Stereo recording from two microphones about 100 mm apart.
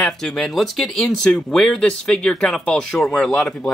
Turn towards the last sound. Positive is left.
turn(degrees=5)  # may be behind; listen again after turning